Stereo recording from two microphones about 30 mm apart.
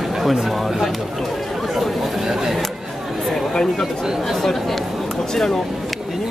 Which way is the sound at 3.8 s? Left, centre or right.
Centre.